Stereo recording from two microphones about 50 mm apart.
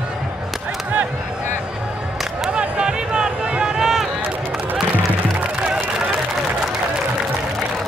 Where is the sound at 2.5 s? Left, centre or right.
Centre.